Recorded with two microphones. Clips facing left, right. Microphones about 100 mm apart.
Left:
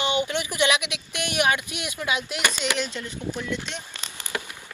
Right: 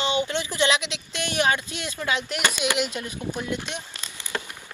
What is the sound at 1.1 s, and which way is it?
Speech, 15° left (ahead or behind).